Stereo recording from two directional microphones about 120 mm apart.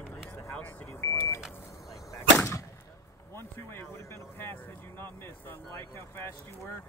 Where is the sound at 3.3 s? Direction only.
20° left (ahead or behind).